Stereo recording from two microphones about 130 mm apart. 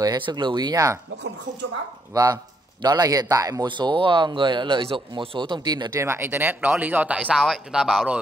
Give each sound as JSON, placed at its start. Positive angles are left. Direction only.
{"t": 0.0, "sound": "speech", "side_deg": -30}
{"t": 2.1, "sound": "speech", "side_deg": -30}